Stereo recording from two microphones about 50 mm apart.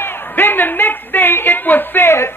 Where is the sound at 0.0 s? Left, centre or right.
Left.